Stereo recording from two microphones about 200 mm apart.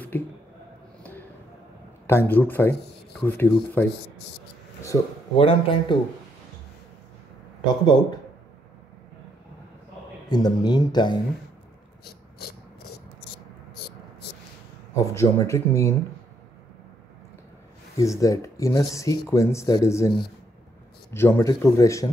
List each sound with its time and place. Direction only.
0.1 s speech: 10° left (ahead or behind)
2.0 s speech: 10° left (ahead or behind)
5.4 s speech: 25° left (ahead or behind)
7.8 s speech: 20° left (ahead or behind)
10.2 s speech: 20° left (ahead or behind)
12.0 s a sound: 50° left (ahead or behind)
15.0 s speech: 15° left (ahead or behind)
17.9 s speech: 15° left (ahead or behind)